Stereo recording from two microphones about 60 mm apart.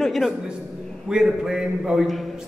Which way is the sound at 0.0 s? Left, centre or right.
Centre.